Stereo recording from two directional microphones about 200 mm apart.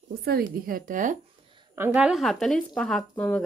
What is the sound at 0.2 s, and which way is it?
Speech, 45° right (ahead or behind).